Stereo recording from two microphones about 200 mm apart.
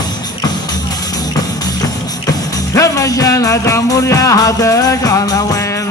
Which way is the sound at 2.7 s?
15° left (ahead or behind).